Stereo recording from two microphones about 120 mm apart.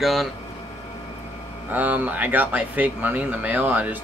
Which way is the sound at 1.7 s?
15° right (ahead or behind).